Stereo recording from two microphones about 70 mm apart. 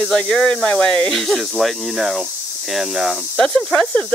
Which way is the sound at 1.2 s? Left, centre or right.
Centre.